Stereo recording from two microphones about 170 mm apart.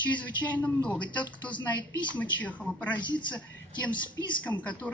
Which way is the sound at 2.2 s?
10° left (ahead or behind).